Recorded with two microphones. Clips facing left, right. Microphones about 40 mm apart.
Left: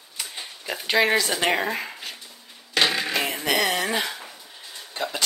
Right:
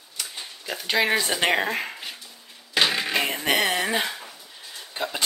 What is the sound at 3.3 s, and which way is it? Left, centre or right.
Music, right.